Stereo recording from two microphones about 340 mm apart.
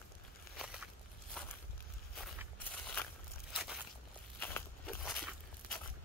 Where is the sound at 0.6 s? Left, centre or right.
Centre.